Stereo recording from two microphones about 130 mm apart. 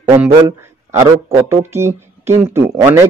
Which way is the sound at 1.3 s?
20° right (ahead or behind).